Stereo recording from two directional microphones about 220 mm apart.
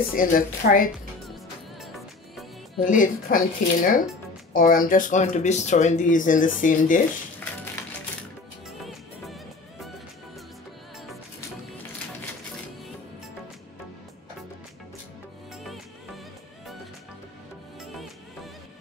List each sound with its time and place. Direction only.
0.1 s speech: 40° left (ahead or behind)
1.8 s music: centre (ahead or behind)
2.8 s speech: 35° left (ahead or behind)
8.6 s music: centre (ahead or behind)
17.9 s music: centre (ahead or behind)